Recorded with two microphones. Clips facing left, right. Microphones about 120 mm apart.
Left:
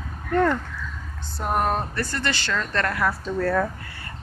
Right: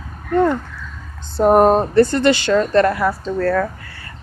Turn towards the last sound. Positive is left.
turn(degrees=10)  # may be behind; listen again after turning